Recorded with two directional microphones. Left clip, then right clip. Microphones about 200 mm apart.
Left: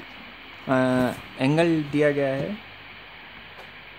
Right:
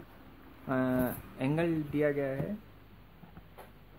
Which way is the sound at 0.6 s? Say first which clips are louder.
Left 9 dB; 40° left (ahead or behind).